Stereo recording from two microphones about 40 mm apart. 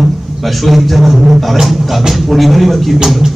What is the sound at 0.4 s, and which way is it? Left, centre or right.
A man's voice, centre.